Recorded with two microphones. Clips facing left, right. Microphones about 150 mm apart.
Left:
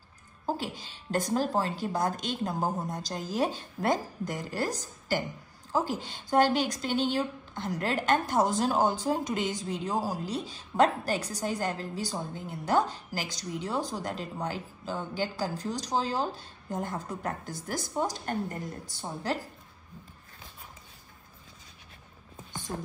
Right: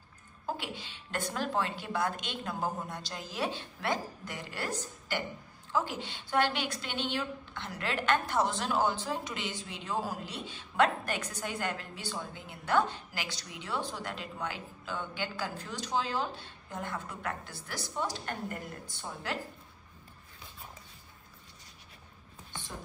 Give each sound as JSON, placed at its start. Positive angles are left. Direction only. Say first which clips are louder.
{"t": 0.5, "sound": "a woman's voice", "louder": "left 5 dB", "side_deg": 40}